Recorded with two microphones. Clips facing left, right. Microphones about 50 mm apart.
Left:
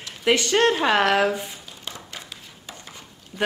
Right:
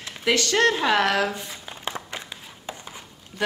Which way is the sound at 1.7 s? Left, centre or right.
Right.